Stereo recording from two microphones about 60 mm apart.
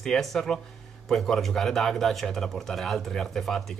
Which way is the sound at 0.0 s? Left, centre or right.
Centre.